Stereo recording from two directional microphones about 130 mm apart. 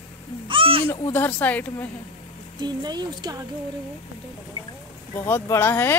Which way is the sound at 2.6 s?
35° right (ahead or behind).